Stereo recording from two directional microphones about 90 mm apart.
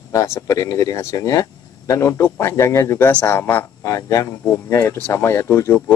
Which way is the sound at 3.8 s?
40° left (ahead or behind).